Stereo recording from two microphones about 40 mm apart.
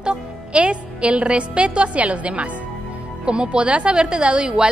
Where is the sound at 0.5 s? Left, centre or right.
Right.